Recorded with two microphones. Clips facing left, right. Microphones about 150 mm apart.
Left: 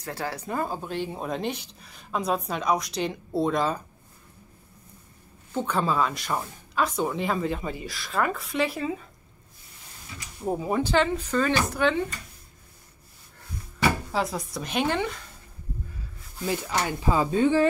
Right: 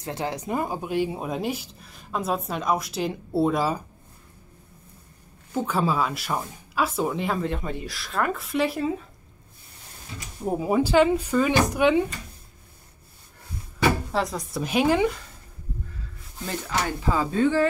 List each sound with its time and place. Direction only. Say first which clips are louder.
0.0 s speech: right 3 dB; 20° right (ahead or behind)
5.5 s speech: right 1 dB; 5° right (ahead or behind)
10.6 s speech: right 5 dB; 5° right (ahead or behind)
14.1 s speech: right 1 dB; centre (ahead or behind)
16.4 s speech: left 1 dB; 15° left (ahead or behind)